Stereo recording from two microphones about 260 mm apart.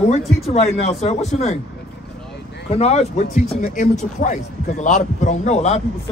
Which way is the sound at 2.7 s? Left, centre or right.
Left.